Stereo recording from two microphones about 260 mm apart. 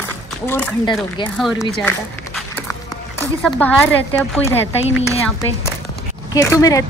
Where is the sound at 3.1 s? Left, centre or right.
Centre.